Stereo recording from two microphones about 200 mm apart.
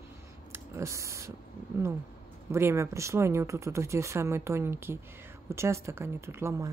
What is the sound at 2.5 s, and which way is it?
Speech, 15° right (ahead or behind).